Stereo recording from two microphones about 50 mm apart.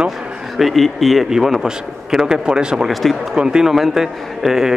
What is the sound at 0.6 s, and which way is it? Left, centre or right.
Speech, centre.